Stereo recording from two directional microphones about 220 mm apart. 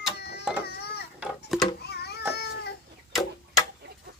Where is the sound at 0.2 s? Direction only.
45° left (ahead or behind).